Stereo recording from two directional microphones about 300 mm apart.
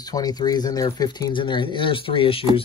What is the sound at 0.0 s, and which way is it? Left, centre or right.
Speech, centre.